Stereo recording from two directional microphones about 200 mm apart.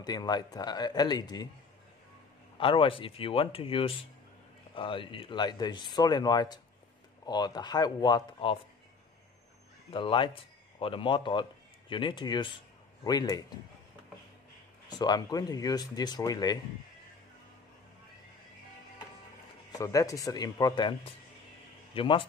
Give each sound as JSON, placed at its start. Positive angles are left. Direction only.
{"t": 0.0, "sound": "speech", "side_deg": 20}
{"t": 2.5, "sound": "speech", "side_deg": 25}
{"t": 9.8, "sound": "a man's voice", "side_deg": 25}
{"t": 14.9, "sound": "speech", "side_deg": 20}
{"t": 19.7, "sound": "a man's voice", "side_deg": 15}